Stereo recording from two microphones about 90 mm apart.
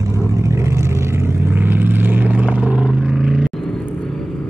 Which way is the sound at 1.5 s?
20° right (ahead or behind).